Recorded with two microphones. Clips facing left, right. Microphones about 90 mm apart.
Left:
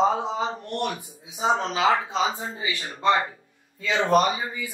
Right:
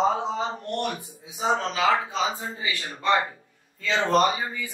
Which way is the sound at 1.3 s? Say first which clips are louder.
Left 1 dB; 25° left (ahead or behind).